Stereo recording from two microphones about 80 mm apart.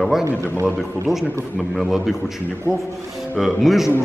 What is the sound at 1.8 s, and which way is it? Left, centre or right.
Speech, centre.